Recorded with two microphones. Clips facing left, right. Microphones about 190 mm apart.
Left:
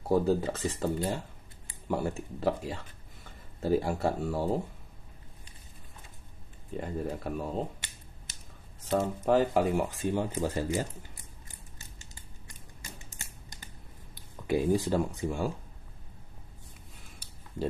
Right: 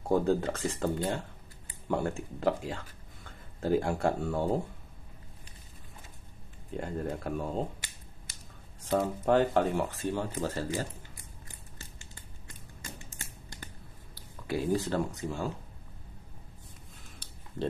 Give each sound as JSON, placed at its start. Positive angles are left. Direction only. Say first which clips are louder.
{"t": 0.0, "sound": "speech", "louder": "left 1 dB", "side_deg": 5}
{"t": 6.7, "sound": "speech", "louder": "even", "side_deg": 0}
{"t": 8.8, "sound": "speech", "louder": "even", "side_deg": 0}
{"t": 9.8, "sound": "speech", "louder": "left 2 dB", "side_deg": 15}
{"t": 14.1, "sound": "a sound", "louder": "left 4 dB", "side_deg": 15}
{"t": 15.1, "sound": "speech", "louder": "left 3 dB", "side_deg": 15}